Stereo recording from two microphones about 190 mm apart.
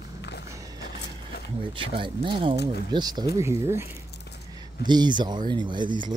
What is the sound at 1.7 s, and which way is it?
Speech, 25° right (ahead or behind).